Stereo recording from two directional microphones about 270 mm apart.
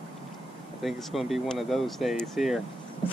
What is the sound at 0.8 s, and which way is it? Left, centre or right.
Speech, centre.